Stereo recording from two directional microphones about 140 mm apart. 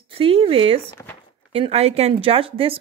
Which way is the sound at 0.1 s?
45° right (ahead or behind).